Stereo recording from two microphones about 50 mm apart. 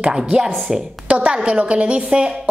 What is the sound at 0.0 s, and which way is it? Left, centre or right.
Speech, centre.